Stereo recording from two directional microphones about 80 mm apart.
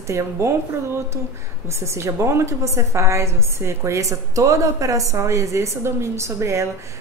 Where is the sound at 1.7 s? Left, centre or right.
Right.